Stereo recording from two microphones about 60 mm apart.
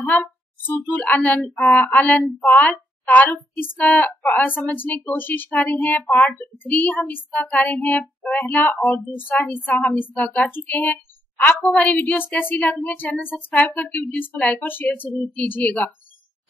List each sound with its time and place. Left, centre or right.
0.0 s a woman's voice: left
7.9 s child singing: centre
8.4 s a woman's voice: left
13.3 s speech: centre
13.7 s speech: left